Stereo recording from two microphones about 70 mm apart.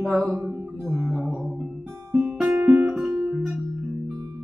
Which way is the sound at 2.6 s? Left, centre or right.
Centre.